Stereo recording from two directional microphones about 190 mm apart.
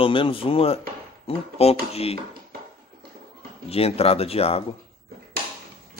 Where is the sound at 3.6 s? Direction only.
30° left (ahead or behind).